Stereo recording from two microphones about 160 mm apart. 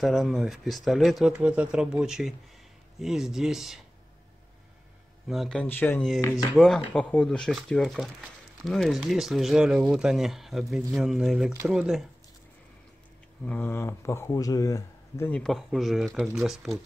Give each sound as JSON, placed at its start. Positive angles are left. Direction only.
{"t": 0.0, "sound": "speech", "side_deg": 0}
{"t": 5.3, "sound": "speech", "side_deg": 0}
{"t": 13.5, "sound": "speech", "side_deg": 10}
{"t": 15.4, "sound": "speech", "side_deg": 0}